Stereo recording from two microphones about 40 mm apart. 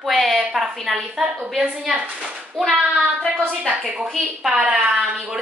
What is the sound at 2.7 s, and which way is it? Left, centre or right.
Child singing, centre.